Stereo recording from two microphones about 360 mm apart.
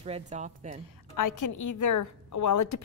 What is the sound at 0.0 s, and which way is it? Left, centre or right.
Speech, centre.